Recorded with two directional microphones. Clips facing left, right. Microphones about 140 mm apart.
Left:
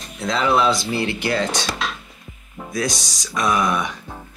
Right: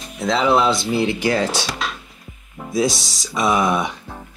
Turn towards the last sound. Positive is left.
turn(degrees=-5)  # may be behind; listen again after turning